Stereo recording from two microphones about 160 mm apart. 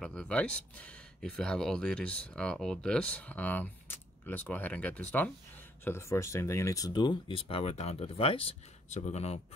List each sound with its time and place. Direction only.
0.0 s speech: 5° left (ahead or behind); by 9.4 s 40° left (ahead or behind)